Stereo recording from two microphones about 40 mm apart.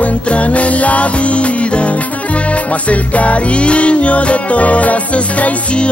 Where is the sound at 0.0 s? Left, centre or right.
Left.